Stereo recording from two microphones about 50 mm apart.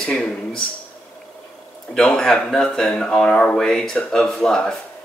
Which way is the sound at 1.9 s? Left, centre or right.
Centre.